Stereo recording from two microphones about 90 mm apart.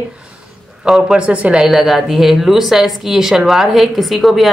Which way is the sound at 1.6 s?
5° right (ahead or behind).